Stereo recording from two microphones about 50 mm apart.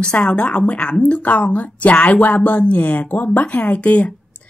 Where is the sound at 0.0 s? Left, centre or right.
Left.